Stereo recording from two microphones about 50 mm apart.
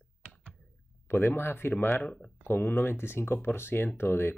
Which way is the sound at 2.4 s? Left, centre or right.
Left.